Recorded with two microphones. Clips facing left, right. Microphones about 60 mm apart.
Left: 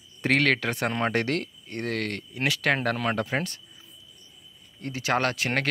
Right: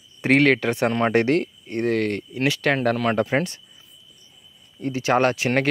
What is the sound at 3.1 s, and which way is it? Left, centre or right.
Speech, right.